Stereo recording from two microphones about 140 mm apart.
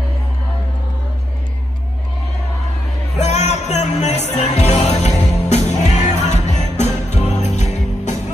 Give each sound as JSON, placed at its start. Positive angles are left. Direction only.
{"t": 3.2, "sound": "music", "side_deg": 50}